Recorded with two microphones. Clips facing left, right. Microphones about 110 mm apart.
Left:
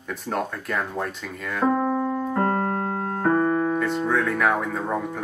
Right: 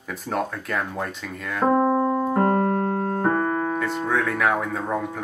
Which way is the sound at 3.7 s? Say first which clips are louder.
Left 1 dB; centre (ahead or behind).